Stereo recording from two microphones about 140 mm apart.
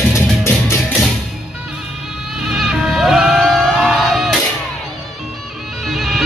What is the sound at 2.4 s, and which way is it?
Music, 5° right (ahead or behind).